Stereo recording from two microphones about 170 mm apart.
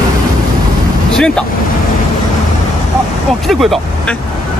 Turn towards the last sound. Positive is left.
turn(degrees=0)  # may be behind; listen again after turning